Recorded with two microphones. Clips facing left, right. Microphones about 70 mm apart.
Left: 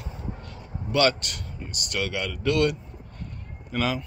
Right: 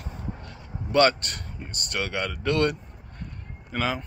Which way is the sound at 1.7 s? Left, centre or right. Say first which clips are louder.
Even; right.